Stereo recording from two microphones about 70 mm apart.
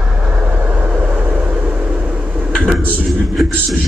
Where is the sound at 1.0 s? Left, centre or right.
Centre.